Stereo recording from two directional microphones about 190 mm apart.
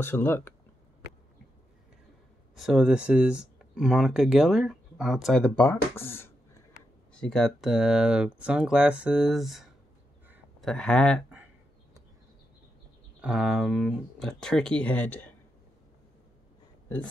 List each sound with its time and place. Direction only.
0.0 s speech: 10° left (ahead or behind)
2.5 s speech: centre (ahead or behind)
13.2 s speech: centre (ahead or behind)